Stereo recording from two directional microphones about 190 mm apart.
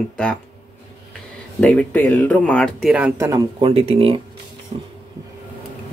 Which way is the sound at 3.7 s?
30° right (ahead or behind).